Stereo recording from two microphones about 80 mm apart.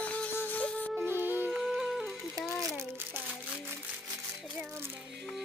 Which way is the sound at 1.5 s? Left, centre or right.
Centre.